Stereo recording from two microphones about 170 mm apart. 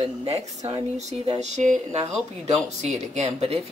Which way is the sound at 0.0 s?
35° right (ahead or behind).